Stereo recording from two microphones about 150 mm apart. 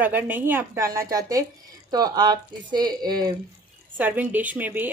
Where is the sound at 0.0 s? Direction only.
10° right (ahead or behind).